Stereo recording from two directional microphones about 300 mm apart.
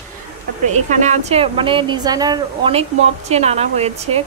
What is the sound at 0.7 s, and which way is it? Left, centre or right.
A woman's voice, right.